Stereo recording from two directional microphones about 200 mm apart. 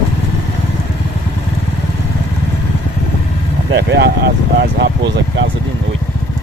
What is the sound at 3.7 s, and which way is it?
Speech, 55° right (ahead or behind).